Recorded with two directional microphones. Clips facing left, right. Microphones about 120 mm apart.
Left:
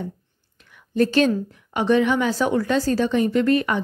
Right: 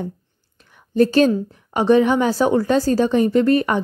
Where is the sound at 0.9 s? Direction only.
35° right (ahead or behind).